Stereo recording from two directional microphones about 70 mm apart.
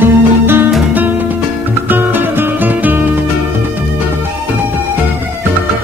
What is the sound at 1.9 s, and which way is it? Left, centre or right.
Music, right.